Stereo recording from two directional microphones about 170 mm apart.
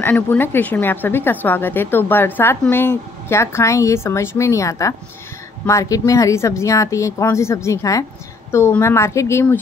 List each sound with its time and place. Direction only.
0.0 s speech: 10° left (ahead or behind)